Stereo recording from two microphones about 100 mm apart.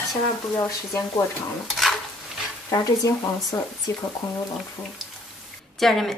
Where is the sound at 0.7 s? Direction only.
35° left (ahead or behind).